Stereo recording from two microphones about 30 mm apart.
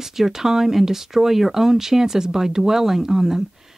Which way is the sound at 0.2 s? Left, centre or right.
Centre.